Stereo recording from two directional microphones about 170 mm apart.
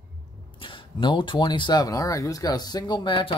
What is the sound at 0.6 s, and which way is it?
Speech, 30° left (ahead or behind).